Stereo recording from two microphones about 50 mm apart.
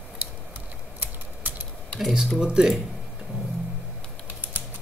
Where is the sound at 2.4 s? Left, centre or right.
Centre.